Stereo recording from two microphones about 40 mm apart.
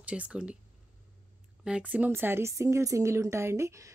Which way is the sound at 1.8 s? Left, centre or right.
Right.